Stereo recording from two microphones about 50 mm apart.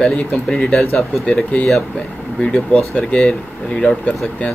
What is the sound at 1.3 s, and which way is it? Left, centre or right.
Speech, left.